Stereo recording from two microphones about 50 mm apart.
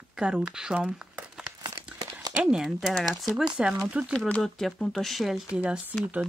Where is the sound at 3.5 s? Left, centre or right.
Centre.